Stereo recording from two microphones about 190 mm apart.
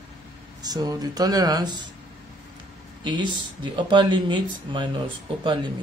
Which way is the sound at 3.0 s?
25° right (ahead or behind).